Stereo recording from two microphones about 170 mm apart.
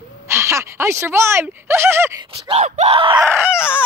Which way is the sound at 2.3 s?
35° right (ahead or behind).